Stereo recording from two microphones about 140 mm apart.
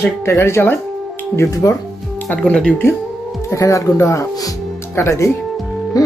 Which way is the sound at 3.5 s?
20° left (ahead or behind).